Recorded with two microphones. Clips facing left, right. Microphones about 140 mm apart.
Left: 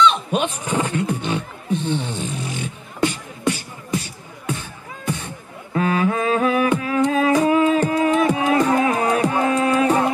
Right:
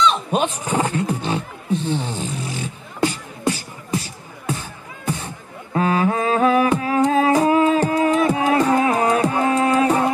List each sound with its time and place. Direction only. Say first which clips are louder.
0.0 s speech: left 1 dB; 35° right (ahead or behind)
1.2 s music: right 1 dB; 35° right (ahead or behind)